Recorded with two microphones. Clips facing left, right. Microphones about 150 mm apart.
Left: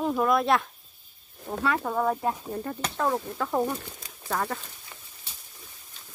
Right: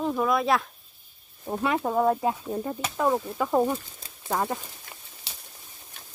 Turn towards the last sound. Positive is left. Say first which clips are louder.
# right 3 dB
turn(degrees=-90)